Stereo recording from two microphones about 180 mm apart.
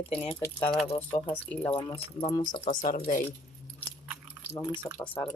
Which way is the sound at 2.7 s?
50° left (ahead or behind).